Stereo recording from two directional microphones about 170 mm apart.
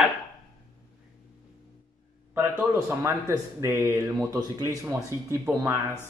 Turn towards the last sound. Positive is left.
turn(degrees=-15)  # may be behind; listen again after turning